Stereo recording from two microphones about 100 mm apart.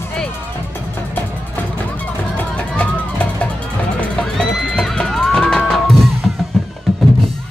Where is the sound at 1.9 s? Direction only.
15° left (ahead or behind).